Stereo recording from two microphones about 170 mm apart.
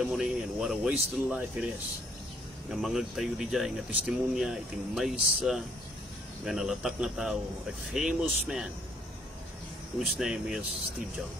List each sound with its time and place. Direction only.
0.0 s speech: centre (ahead or behind)
2.7 s speech: centre (ahead or behind)
9.9 s speech: 5° right (ahead or behind)